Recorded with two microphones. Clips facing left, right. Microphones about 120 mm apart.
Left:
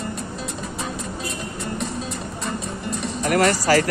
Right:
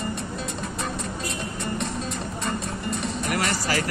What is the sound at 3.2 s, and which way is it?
Speech, 50° left (ahead or behind).